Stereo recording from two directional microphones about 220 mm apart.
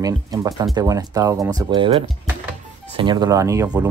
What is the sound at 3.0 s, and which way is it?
Speech, 20° right (ahead or behind).